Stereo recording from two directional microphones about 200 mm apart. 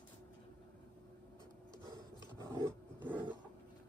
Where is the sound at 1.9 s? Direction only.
20° right (ahead or behind).